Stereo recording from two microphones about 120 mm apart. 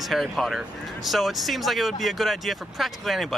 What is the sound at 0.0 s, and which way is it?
Speech, centre (ahead or behind).